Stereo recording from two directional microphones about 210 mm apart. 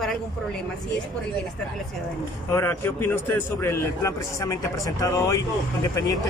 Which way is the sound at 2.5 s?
10° left (ahead or behind).